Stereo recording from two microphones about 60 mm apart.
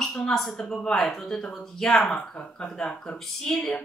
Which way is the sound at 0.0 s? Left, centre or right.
Centre.